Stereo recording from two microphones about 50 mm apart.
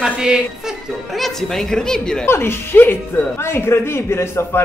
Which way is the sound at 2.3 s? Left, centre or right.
Left.